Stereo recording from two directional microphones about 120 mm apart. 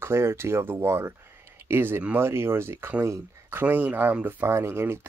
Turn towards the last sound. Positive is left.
turn(degrees=-20)  # may be behind; listen again after turning